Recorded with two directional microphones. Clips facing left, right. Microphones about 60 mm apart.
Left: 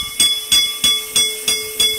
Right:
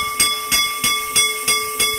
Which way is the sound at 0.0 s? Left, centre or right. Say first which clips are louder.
Right 2 dB; right.